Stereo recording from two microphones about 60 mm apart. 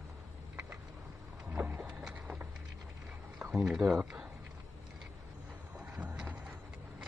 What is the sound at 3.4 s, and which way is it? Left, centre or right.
Speech, centre.